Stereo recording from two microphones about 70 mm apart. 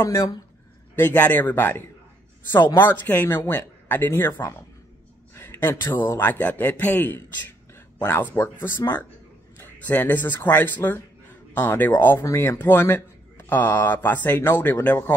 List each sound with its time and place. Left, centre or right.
0.0 s speech: left
0.9 s a man's voice: left
5.3 s a sound: left
5.9 s a man's voice: left
12.5 s a man's voice: left
12.9 s a sound: left
13.7 s a man's voice: left